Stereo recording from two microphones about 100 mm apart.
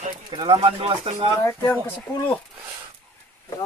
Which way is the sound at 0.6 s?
80° right.